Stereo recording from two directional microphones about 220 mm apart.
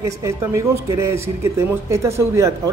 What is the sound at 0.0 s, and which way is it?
Speech, 10° right (ahead or behind).